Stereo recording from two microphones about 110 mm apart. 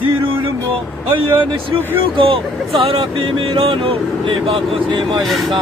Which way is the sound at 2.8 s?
55° right (ahead or behind).